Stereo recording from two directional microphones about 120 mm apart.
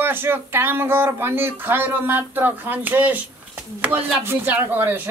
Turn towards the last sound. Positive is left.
turn(degrees=-20)  # may be behind; listen again after turning